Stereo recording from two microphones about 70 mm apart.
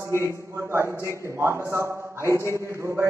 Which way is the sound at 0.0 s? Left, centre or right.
Right.